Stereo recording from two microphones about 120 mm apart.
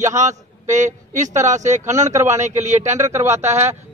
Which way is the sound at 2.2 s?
75° right (ahead or behind).